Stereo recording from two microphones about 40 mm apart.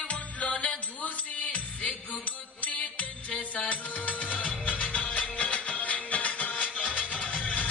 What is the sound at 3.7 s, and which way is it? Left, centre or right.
Music, left.